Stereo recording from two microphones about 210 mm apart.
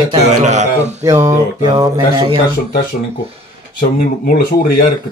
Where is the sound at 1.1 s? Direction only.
15° right (ahead or behind).